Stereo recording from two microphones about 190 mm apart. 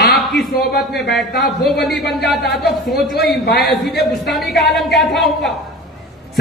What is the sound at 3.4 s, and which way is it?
Speech, 60° left (ahead or behind).